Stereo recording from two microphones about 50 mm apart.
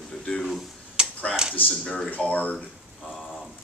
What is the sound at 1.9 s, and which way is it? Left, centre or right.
Speech, left.